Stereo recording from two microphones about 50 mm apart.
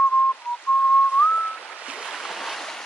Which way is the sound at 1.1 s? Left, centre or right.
Left.